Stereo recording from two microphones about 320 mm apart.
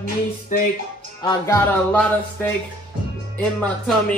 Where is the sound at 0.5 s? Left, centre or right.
Left.